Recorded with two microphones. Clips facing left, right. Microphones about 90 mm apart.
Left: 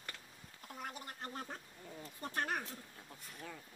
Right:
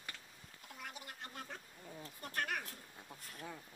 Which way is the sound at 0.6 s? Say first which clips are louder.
Left 4 dB; 40° left (ahead or behind).